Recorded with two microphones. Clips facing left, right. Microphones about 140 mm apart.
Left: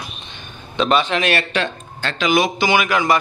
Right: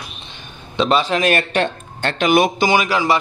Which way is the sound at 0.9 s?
35° right (ahead or behind).